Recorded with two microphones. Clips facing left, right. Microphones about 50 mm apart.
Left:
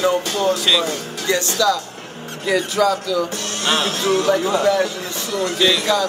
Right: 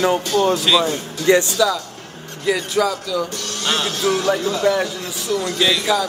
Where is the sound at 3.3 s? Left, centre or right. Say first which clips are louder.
Left 2 dB; left.